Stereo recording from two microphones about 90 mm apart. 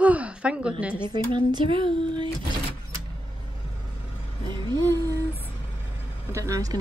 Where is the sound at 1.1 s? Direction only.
55° right (ahead or behind).